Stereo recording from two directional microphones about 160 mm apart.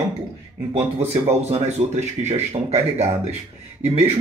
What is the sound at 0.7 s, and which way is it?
Speech, 40° right (ahead or behind).